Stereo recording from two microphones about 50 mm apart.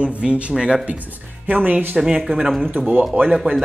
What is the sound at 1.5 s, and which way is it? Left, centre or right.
Speech, right.